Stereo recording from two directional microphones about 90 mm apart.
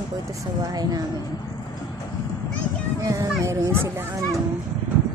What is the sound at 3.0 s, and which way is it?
Speech, 40° right (ahead or behind).